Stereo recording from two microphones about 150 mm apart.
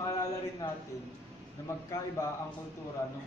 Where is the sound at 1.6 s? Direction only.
20° left (ahead or behind).